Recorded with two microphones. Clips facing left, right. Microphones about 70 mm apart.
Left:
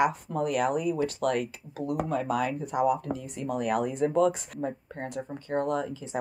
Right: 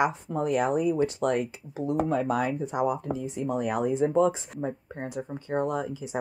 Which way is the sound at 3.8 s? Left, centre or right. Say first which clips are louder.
Right 3 dB; left.